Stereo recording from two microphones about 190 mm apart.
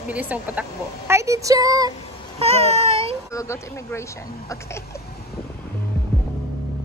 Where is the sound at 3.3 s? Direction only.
15° left (ahead or behind).